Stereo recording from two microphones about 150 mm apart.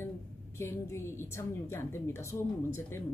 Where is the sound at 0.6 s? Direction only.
20° left (ahead or behind).